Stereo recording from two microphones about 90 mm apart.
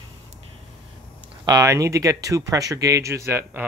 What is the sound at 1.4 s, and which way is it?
Speech, 40° right (ahead or behind).